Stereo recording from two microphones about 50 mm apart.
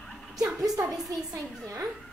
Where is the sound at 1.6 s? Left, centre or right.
Right.